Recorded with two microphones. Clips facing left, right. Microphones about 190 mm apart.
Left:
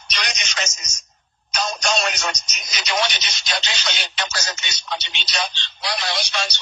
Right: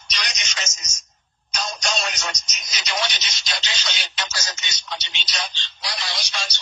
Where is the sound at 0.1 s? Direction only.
60° left (ahead or behind).